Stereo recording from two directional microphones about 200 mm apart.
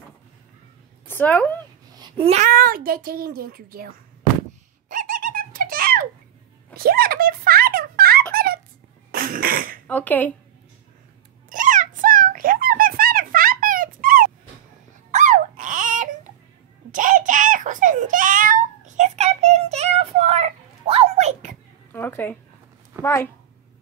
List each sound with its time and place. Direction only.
1.0 s speech: 10° left (ahead or behind)
2.0 s speech: 30° right (ahead or behind)
2.5 s a child's voice: 45° right (ahead or behind)
4.8 s a sound: 45° right (ahead or behind)
9.1 s cough: 45° right (ahead or behind)
9.8 s speech: 10° left (ahead or behind)
11.4 s a sound: 40° right (ahead or behind)
21.9 s speech: 10° left (ahead or behind)